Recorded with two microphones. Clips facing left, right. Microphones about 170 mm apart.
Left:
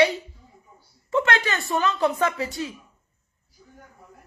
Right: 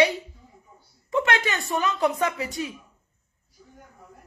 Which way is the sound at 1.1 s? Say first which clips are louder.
Left 1 dB; 15° right (ahead or behind).